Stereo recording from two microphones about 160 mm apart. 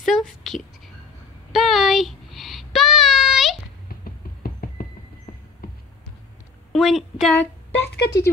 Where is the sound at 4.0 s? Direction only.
65° left (ahead or behind).